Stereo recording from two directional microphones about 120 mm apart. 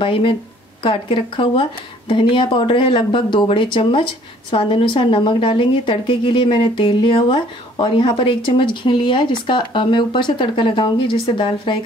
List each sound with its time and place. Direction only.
0.0 s speech: 50° left (ahead or behind)